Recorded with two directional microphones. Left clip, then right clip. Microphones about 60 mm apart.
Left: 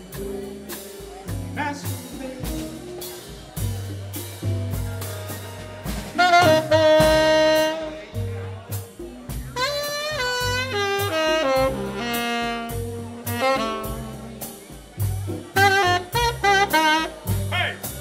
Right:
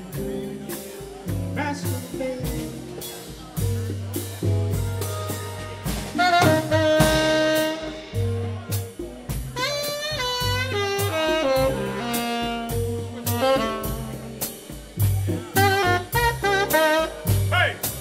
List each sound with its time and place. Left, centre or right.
1.5 s music: centre
6.1 s saxophone: centre
7.0 s music: centre
7.3 s music: centre
9.6 s saxophone: centre
13.3 s music: centre
15.6 s music: centre
16.4 s music: left